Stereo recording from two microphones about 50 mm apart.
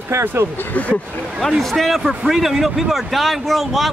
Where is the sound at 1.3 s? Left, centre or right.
Centre.